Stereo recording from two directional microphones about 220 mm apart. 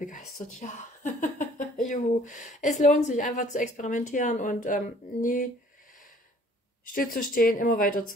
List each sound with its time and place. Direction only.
0.0 s a sound: 35° left (ahead or behind)
1.9 s a woman's voice: 35° left (ahead or behind)
6.9 s a woman's voice: 40° left (ahead or behind)